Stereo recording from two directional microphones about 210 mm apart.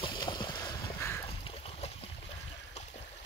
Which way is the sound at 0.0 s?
20° left (ahead or behind).